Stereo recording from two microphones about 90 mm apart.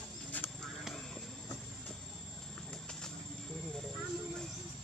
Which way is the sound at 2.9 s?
10° left (ahead or behind).